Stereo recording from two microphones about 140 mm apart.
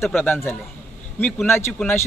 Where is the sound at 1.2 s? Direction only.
10° left (ahead or behind).